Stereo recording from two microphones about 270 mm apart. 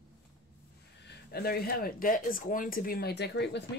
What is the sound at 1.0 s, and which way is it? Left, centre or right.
Speech, left.